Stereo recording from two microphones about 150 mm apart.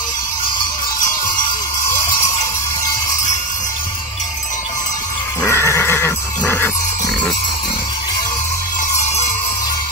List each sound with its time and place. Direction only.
5.5 s jingle bell: 20° left (ahead or behind)